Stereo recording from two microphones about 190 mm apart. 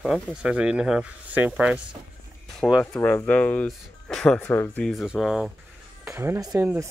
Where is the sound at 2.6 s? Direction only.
5° left (ahead or behind).